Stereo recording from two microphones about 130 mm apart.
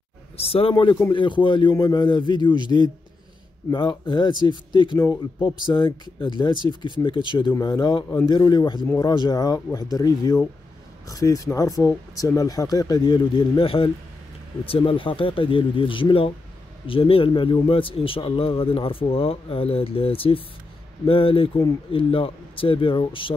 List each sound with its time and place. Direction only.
0.4 s a man's voice: 50° left (ahead or behind)
3.7 s a man's voice: 40° left (ahead or behind)
4.9 s speech: 20° left (ahead or behind)
5.7 s a man's voice: 40° left (ahead or behind)